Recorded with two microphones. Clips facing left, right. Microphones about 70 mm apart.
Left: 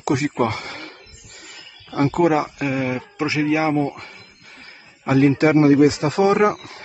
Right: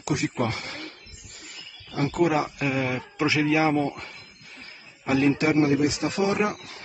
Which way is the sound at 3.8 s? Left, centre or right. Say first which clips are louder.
Left 2 dB; left.